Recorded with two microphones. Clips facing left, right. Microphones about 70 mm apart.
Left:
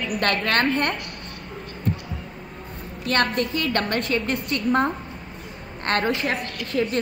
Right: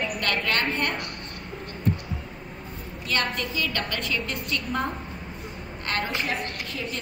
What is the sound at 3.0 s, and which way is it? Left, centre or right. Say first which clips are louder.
A woman's voice: left 6 dB; left.